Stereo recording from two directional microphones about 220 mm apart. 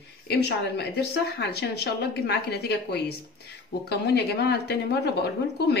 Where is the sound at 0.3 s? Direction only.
45° left (ahead or behind).